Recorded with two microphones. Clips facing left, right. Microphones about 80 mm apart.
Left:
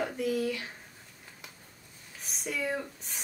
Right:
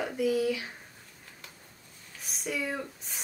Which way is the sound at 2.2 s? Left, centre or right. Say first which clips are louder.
Even; centre.